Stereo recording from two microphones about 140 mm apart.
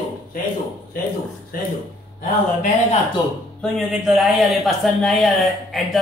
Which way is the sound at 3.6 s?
5° right (ahead or behind).